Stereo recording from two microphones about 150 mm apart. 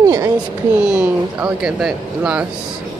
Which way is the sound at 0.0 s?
20° right (ahead or behind).